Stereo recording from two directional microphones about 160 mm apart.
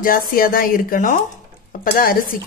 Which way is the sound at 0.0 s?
60° left (ahead or behind).